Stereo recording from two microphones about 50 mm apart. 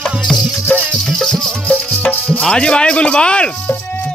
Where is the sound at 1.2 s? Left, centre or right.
Centre.